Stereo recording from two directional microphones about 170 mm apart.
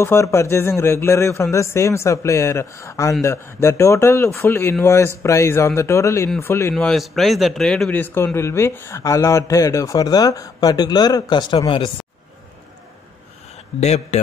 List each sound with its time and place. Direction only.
0.0 s speech: 15° left (ahead or behind)
6.7 s a man's voice: centre (ahead or behind); by 11.9 s 30° left (ahead or behind)
13.7 s a man's voice: 40° left (ahead or behind)